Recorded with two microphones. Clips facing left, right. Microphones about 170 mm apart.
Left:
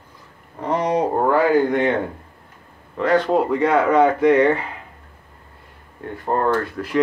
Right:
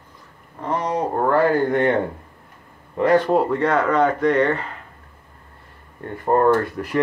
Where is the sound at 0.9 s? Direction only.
15° left (ahead or behind).